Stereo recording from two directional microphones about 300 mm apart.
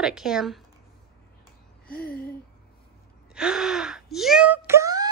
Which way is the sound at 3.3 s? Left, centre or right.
Centre.